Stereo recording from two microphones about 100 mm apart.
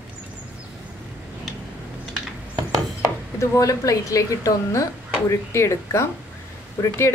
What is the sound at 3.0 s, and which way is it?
A woman's voice, 35° left (ahead or behind).